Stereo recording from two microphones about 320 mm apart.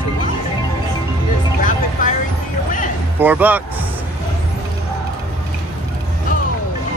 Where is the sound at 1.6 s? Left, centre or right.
Left.